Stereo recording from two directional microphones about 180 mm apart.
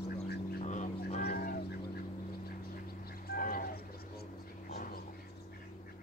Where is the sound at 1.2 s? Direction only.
55° left (ahead or behind).